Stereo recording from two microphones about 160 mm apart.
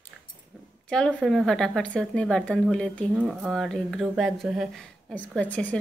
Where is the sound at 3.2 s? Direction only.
5° right (ahead or behind).